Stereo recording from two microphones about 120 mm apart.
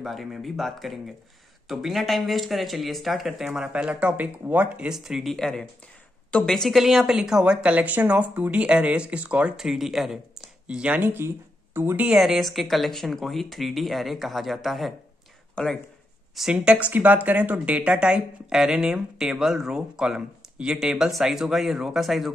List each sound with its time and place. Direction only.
0.0 s speech: centre (ahead or behind); by 12.1 s 20° right (ahead or behind)
12.1 s speech: 5° right (ahead or behind)
16.3 s speech: 5° right (ahead or behind)